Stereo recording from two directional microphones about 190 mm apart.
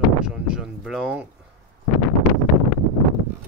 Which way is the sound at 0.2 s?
5° right (ahead or behind).